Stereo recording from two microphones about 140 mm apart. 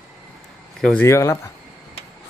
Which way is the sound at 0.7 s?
5° left (ahead or behind).